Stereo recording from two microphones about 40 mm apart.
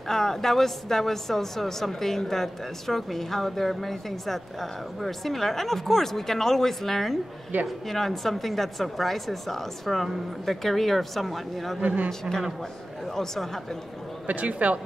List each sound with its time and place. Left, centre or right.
0.1 s speech: centre
7.5 s speech: right
7.9 s a woman's voice: centre
11.8 s speech: right
12.1 s speech: centre
14.2 s speech: right